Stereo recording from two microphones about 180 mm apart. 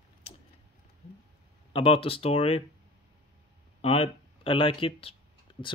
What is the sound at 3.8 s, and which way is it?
Speech, 35° left (ahead or behind).